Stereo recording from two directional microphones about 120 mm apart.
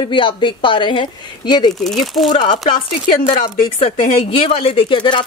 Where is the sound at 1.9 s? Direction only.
Centre (ahead or behind).